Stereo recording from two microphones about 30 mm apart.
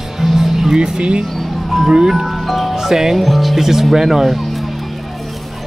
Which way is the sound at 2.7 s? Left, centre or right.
Centre.